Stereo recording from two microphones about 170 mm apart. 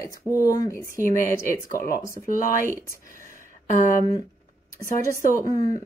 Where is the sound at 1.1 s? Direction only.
50° right (ahead or behind).